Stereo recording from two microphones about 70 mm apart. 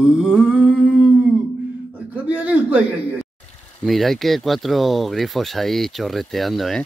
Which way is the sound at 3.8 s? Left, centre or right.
Centre.